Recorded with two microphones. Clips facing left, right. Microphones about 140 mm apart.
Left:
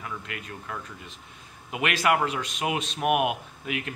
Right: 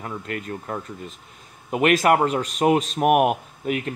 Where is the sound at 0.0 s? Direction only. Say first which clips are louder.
Right 7 dB; 40° right (ahead or behind).